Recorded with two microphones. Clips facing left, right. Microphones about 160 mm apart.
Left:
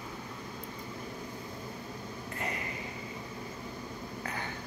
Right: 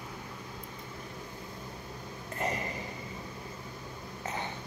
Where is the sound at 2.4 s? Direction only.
40° right (ahead or behind).